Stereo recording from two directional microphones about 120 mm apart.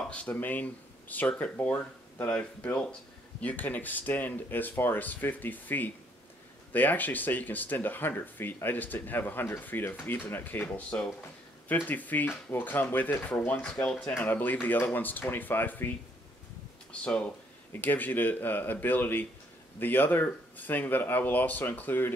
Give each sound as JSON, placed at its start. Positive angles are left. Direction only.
{"t": 0.0, "sound": "speech", "side_deg": 10}
{"t": 17.0, "sound": "speech", "side_deg": 10}